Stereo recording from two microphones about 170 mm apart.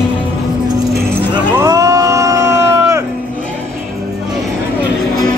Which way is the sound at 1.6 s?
20° right (ahead or behind).